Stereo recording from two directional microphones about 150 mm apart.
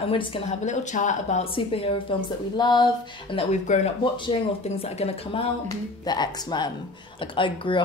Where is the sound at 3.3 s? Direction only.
45° left (ahead or behind).